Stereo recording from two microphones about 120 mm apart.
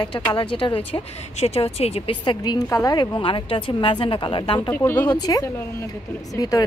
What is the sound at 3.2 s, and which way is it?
A woman's voice, 45° left (ahead or behind).